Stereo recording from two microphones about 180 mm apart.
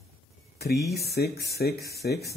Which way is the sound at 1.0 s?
65° left (ahead or behind).